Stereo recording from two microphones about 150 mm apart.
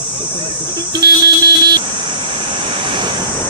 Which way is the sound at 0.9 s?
25° right (ahead or behind).